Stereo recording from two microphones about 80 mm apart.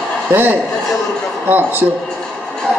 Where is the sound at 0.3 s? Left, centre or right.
Right.